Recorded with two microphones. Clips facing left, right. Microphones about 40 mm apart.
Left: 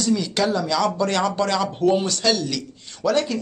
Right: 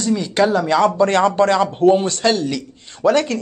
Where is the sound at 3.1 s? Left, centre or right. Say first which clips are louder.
Right 4 dB; right.